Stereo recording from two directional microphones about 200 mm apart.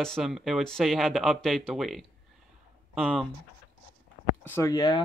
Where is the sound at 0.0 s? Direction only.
Centre (ahead or behind).